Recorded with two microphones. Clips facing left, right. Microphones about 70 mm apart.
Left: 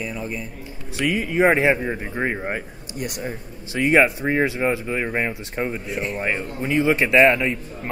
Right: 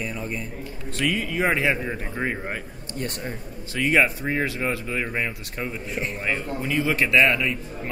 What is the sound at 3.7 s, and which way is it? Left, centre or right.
A man's voice, left.